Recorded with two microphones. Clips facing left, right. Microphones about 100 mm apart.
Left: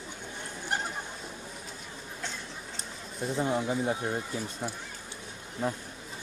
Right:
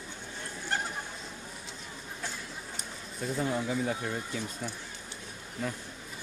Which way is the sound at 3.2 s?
20° left (ahead or behind).